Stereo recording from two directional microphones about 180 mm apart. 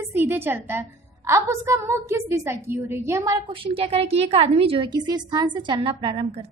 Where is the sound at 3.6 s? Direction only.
30° right (ahead or behind).